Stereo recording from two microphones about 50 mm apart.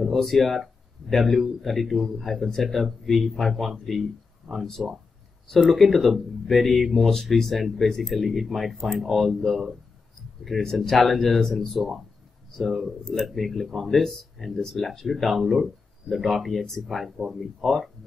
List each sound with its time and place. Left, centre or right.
0.1 s speech: centre